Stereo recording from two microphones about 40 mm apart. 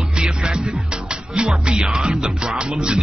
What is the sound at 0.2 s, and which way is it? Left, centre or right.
Music, centre.